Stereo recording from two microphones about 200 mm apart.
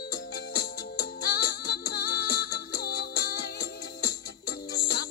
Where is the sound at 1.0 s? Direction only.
50° left (ahead or behind).